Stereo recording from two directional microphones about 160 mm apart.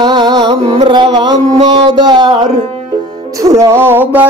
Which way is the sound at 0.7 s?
30° right (ahead or behind).